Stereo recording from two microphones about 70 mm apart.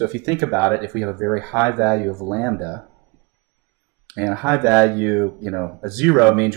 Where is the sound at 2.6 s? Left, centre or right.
Left.